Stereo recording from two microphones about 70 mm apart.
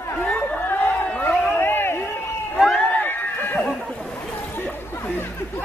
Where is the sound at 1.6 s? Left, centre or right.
Left.